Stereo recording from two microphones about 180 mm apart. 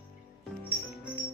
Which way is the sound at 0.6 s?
10° right (ahead or behind).